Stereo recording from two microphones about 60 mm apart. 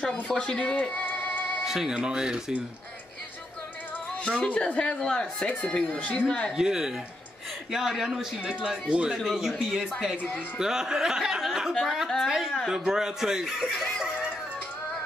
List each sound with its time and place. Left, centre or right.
0.0 s speech: centre
1.6 s a man's voice: centre
4.2 s speech: centre
6.5 s a man's voice: centre
9.2 s a woman's voice: centre
9.6 s a man's voice: centre
12.6 s a man's voice: centre
13.9 s music: centre